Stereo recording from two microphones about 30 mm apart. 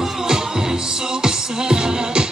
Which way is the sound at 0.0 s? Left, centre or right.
Right.